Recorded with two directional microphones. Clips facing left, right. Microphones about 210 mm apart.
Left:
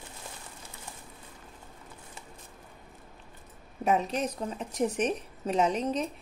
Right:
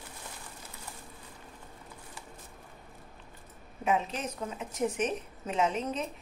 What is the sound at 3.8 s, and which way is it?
A woman's voice, 40° left (ahead or behind).